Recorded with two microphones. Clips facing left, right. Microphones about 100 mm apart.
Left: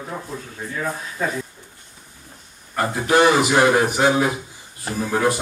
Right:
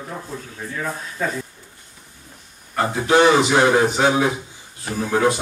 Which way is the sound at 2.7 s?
20° right (ahead or behind).